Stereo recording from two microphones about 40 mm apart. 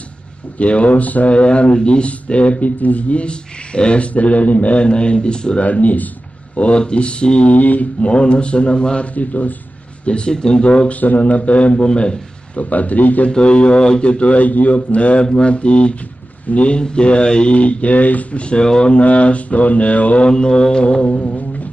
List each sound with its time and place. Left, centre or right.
0.6 s speech: left
1.3 s a man's voice: left
4.1 s a man's voice: left
5.6 s speech: left
6.5 s a man's voice: left
7.5 s a man's voice: left
9.1 s speech: left
10.0 s a man's voice: left
11.0 s speech: left
12.5 s speech: left
13.3 s a man's voice: left
18.4 s speech: left
20.2 s mantra: left